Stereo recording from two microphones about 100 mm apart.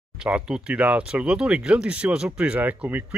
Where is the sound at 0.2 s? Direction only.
10° right (ahead or behind).